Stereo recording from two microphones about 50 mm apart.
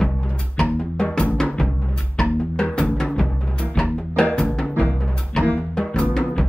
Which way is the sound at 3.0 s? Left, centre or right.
Centre.